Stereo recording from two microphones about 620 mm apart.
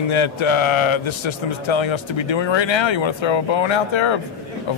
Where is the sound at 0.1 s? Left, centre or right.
Left.